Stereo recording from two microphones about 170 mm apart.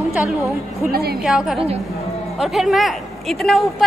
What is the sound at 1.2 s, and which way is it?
Speech, 5° right (ahead or behind).